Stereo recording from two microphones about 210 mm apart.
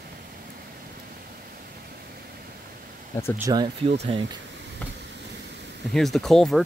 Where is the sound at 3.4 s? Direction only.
20° right (ahead or behind).